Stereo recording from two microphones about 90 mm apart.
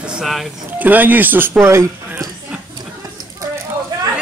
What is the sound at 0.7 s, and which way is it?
Speech, 20° right (ahead or behind).